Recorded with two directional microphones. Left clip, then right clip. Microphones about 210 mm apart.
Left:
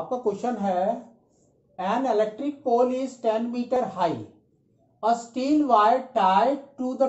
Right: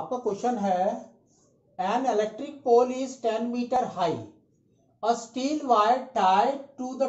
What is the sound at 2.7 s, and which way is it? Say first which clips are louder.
Speech: right 1 dB; 15° left (ahead or behind).